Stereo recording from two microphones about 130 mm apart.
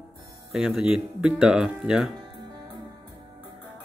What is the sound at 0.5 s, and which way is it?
Speech, 5° right (ahead or behind).